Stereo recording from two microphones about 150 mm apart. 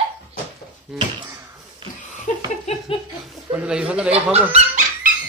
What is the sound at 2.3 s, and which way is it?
Laughter, 55° left (ahead or behind).